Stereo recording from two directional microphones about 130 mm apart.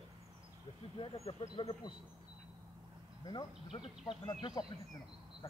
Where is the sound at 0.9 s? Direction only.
45° left (ahead or behind).